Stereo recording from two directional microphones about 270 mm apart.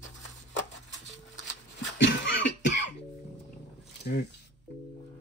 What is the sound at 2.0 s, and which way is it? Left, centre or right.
Cough, left.